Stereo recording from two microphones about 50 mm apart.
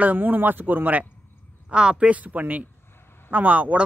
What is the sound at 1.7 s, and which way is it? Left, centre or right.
Speech, centre.